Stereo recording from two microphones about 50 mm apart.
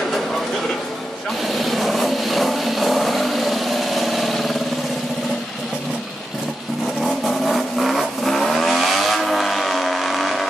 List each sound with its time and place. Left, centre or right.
1.5 s vehicle: centre
7.0 s vehicle: centre